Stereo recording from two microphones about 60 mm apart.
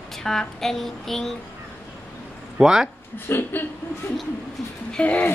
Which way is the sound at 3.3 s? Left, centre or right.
Left.